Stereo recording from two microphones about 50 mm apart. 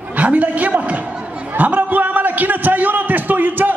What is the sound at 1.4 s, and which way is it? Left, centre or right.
A man's voice, right.